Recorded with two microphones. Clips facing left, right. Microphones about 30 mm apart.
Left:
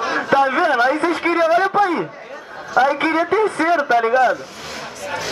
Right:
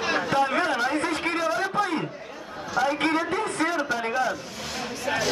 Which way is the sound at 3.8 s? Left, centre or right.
Left.